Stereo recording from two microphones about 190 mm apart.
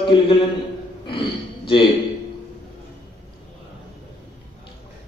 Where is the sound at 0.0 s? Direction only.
25° left (ahead or behind).